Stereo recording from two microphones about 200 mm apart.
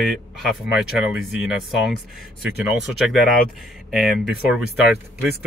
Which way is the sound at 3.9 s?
Centre (ahead or behind).